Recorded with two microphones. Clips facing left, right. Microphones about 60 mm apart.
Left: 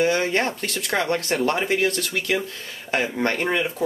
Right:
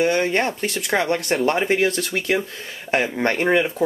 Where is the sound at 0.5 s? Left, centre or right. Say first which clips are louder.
Right 3 dB; centre.